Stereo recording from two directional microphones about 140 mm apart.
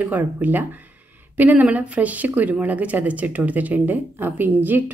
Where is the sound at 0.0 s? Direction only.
10° right (ahead or behind).